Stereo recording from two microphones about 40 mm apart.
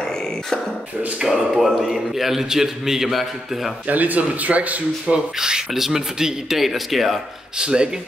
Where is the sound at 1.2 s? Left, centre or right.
Centre.